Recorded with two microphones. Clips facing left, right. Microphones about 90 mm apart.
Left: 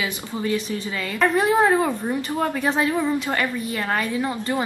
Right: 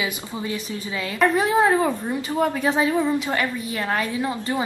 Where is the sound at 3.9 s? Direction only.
15° right (ahead or behind).